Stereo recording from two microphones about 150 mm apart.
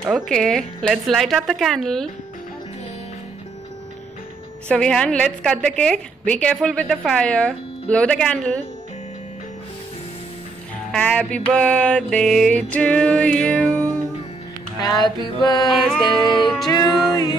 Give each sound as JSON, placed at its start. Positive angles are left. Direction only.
{"t": 0.1, "sound": "a woman's voice", "side_deg": 0}
{"t": 4.6, "sound": "a woman's voice", "side_deg": 5}
{"t": 10.9, "sound": "music", "side_deg": 10}
{"t": 11.3, "sound": "a woman's voice", "side_deg": 10}
{"t": 14.8, "sound": "music", "side_deg": 30}
{"t": 15.7, "sound": "a woman's voice", "side_deg": 0}
{"t": 16.2, "sound": "music", "side_deg": 30}